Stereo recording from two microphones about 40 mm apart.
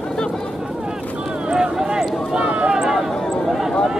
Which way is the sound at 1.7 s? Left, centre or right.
Centre.